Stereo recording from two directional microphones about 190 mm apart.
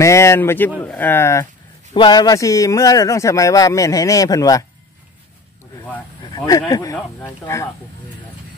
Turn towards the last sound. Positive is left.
turn(degrees=15)  # may be behind; listen again after turning